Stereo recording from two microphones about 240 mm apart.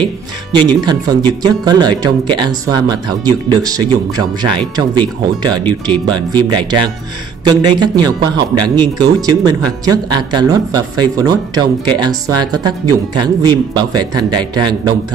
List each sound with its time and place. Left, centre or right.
0.6 s speech: centre